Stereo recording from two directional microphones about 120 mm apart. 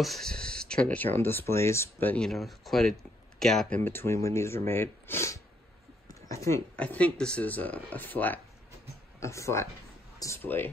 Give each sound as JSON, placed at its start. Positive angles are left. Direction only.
{"t": 0.0, "sound": "speech", "side_deg": 5}
{"t": 2.2, "sound": "speech", "side_deg": 0}
{"t": 3.8, "sound": "speech", "side_deg": 20}
{"t": 6.8, "sound": "speech", "side_deg": 10}
{"t": 9.2, "sound": "speech", "side_deg": 25}